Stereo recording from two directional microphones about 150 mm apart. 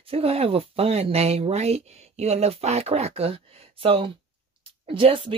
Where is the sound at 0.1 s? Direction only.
40° right (ahead or behind).